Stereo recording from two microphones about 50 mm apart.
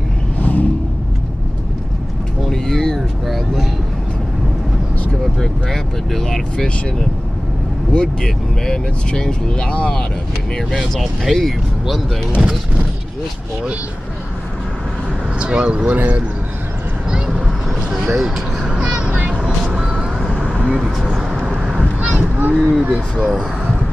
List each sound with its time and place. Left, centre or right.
0.4 s vehicle: left
2.4 s a sound: centre
3.3 s speech: centre
5.2 s speech: centre
10.5 s speech: centre
15.3 s speech: right
15.9 s speech: right
17.9 s vehicle: centre
20.8 s speech: centre
22.0 s a sound: right
22.7 s speech: right